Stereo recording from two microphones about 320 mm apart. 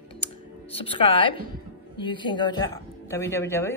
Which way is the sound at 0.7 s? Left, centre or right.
Centre.